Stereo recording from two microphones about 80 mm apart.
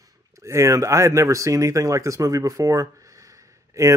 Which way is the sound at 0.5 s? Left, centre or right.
Right.